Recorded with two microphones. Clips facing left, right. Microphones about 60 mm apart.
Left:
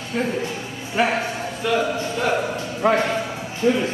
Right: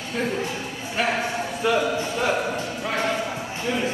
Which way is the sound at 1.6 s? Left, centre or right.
Centre.